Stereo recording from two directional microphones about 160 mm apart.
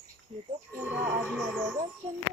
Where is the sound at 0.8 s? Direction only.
10° right (ahead or behind).